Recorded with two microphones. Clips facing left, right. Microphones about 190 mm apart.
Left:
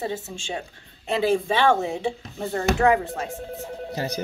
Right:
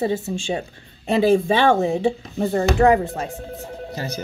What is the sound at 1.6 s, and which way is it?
Speech, 5° right (ahead or behind).